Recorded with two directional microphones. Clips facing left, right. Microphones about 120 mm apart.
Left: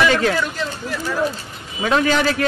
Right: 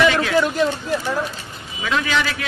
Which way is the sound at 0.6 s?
25° right (ahead or behind).